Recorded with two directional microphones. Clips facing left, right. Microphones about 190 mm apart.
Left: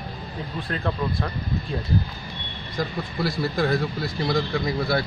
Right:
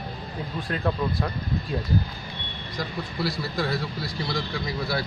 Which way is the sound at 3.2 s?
50° left (ahead or behind).